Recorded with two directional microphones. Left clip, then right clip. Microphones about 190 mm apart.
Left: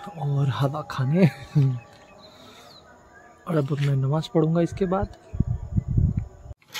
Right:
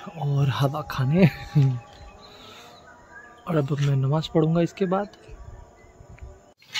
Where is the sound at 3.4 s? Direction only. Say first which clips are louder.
Even; centre (ahead or behind).